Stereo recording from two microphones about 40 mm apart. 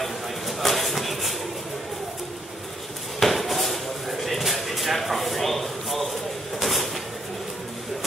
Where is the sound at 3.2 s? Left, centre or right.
Centre.